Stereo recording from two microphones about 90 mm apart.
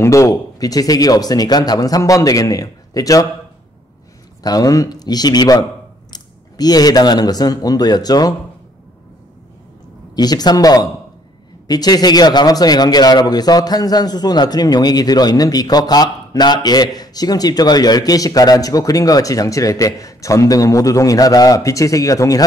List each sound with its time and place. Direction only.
0.0 s a man's voice: 35° left (ahead or behind)
4.4 s a man's voice: 45° left (ahead or behind)
10.1 s a man's voice: 50° left (ahead or behind)